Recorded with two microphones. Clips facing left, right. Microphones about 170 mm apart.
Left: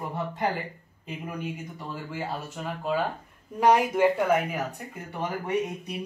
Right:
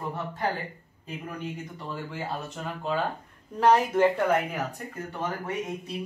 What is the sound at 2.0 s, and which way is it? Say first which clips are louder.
Speech: left 3 dB; 5° left (ahead or behind).